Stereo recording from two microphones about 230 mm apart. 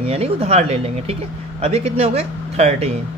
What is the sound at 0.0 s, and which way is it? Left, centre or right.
Speech, right.